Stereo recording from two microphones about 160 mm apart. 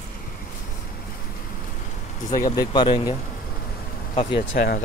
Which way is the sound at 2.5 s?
25° left (ahead or behind).